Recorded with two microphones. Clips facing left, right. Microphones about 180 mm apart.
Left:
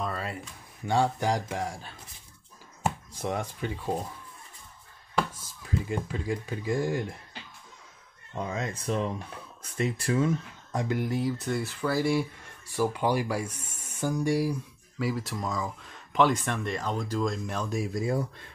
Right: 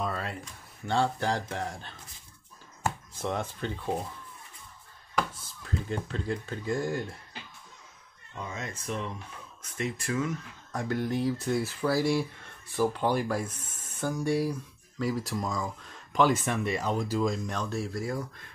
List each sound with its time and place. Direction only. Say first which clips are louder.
0.0 s a sound: even; centre (ahead or behind)
0.8 s speech: left 2 dB; 15° left (ahead or behind)
2.8 s chopping: left 1 dB; 10° left (ahead or behind)
5.6 s speech: left 2 dB; 10° left (ahead or behind)
8.4 s speech: left 5 dB; 35° left (ahead or behind); by 12.3 s centre (ahead or behind)
12.7 s speech: even; 10° left (ahead or behind)
15.0 s speech: even; centre (ahead or behind); by 18.2 s 20° left (ahead or behind)